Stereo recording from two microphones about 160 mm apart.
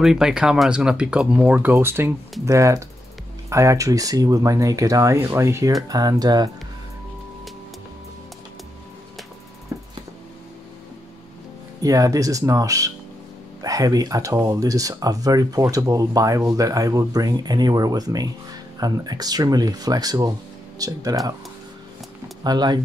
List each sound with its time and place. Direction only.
0.0 s speech: 5° right (ahead or behind); by 6.5 s 25° right (ahead or behind)
9.7 s music: 15° right (ahead or behind)
11.8 s speech: 20° right (ahead or behind)
22.4 s speech: 25° right (ahead or behind)